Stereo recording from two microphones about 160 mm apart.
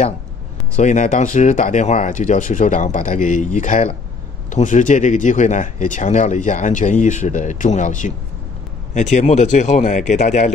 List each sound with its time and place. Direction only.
0.7 s speech: 50° left (ahead or behind)